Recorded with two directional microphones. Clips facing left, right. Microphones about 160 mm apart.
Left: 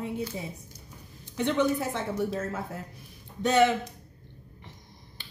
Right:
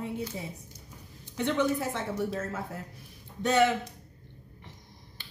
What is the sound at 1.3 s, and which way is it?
Speech, 20° left (ahead or behind).